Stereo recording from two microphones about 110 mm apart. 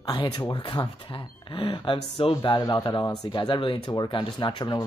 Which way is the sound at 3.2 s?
40° left (ahead or behind).